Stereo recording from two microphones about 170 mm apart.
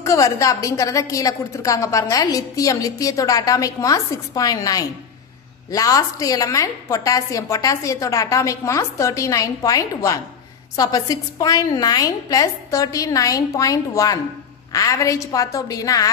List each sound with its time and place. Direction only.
0.0 s a woman's voice: 20° left (ahead or behind)